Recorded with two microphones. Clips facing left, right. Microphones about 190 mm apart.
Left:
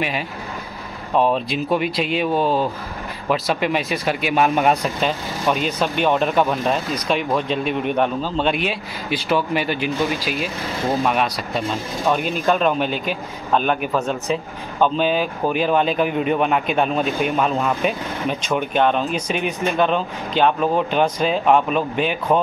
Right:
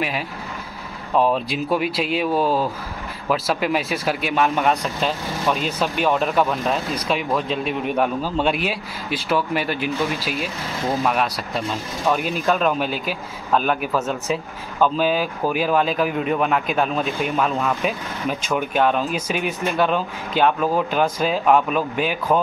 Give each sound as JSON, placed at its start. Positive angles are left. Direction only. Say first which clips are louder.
{"t": 1.1, "sound": "speech", "louder": "left 1 dB", "side_deg": -5}
{"t": 4.4, "sound": "speech", "louder": "left 3 dB", "side_deg": 15}
{"t": 5.0, "sound": "speech", "louder": "even", "side_deg": 0}